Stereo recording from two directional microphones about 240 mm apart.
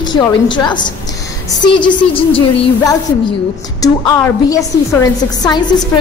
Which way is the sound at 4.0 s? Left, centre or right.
Centre.